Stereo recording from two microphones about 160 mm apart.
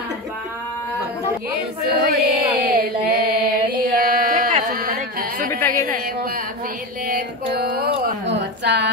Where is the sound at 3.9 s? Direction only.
65° right (ahead or behind).